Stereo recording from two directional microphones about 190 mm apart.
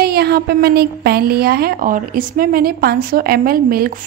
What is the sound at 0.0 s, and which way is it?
A woman's voice, 55° right (ahead or behind).